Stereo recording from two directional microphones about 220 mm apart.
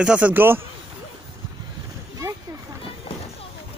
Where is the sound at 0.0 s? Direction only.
5° right (ahead or behind).